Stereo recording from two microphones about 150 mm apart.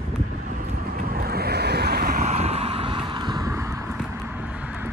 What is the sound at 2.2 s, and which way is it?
Vehicle, 50° right (ahead or behind).